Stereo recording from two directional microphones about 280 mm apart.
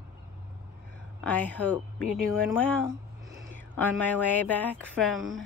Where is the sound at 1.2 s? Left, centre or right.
Centre.